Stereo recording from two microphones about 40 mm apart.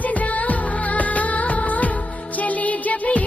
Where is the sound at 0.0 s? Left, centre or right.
Left.